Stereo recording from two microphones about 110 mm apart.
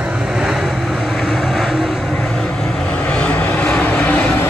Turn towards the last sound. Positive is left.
turn(degrees=10)  # may be behind; listen again after turning